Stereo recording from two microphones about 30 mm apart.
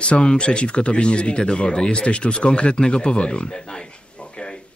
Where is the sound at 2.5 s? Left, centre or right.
Left.